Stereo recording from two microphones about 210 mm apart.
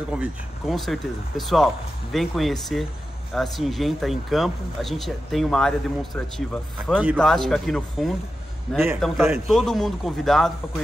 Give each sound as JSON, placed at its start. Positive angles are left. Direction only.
{"t": 0.1, "sound": "speech", "side_deg": 0}